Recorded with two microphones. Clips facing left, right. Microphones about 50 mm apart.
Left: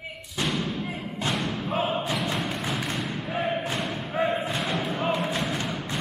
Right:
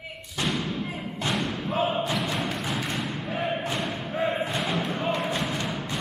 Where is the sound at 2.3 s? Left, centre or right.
Centre.